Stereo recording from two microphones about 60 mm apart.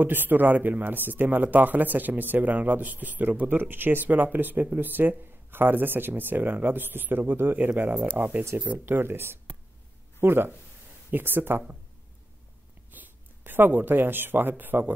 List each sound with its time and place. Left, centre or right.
0.0 s speech: right
12.9 s speech: right